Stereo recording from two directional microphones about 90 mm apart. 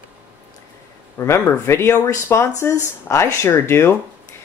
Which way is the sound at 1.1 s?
30° left (ahead or behind).